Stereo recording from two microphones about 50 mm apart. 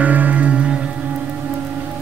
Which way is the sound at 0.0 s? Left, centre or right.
Right.